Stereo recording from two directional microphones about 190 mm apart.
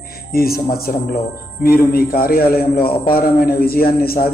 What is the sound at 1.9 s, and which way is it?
A man's voice, 50° left (ahead or behind).